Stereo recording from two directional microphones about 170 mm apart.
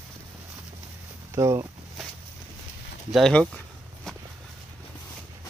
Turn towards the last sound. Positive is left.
turn(degrees=5)  # may be behind; listen again after turning